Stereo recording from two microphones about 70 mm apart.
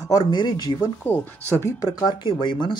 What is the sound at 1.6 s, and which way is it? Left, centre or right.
Speech, left.